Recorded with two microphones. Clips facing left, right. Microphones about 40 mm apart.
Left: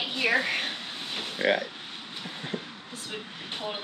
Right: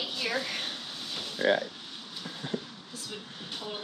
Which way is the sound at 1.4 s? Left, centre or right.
Left.